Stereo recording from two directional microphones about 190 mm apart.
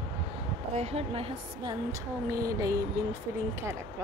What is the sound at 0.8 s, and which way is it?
A woman's voice, 35° right (ahead or behind).